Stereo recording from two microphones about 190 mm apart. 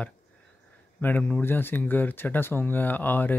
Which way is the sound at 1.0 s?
10° left (ahead or behind).